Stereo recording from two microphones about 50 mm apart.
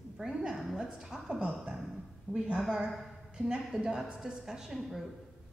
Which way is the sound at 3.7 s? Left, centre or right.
Centre.